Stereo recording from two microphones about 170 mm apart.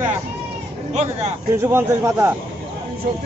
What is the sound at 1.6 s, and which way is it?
Speech, 15° right (ahead or behind).